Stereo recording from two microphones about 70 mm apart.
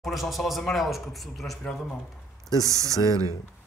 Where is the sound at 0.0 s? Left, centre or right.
Centre.